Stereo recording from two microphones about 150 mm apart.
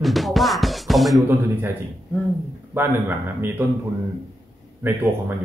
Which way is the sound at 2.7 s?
15° right (ahead or behind).